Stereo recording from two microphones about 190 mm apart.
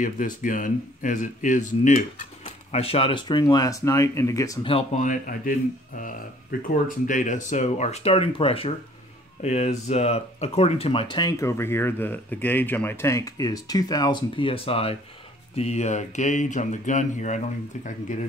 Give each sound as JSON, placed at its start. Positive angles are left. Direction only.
{"t": 0.0, "sound": "speech", "side_deg": 45}
{"t": 4.9, "sound": "speech", "side_deg": 45}